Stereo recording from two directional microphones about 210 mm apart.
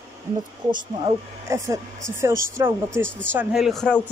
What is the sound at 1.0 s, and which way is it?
Speech, 15° right (ahead or behind).